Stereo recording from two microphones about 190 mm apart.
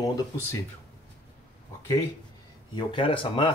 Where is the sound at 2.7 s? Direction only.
25° left (ahead or behind).